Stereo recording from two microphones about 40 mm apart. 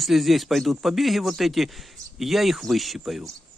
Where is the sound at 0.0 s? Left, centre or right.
Centre.